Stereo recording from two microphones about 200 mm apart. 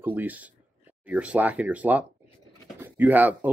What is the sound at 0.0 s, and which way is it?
Speech, 10° right (ahead or behind).